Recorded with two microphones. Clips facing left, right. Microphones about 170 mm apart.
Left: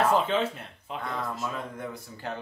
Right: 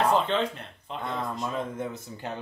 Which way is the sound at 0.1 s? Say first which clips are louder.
Even; 5° left (ahead or behind).